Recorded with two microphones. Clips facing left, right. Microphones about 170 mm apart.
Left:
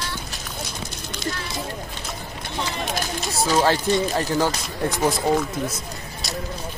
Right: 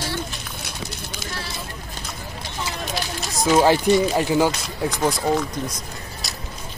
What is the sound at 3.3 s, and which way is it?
Speech, 15° right (ahead or behind).